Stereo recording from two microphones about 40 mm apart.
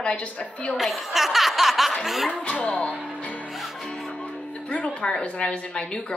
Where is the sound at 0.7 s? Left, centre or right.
Centre.